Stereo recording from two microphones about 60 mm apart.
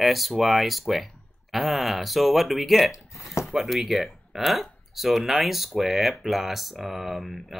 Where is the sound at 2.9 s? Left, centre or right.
Left.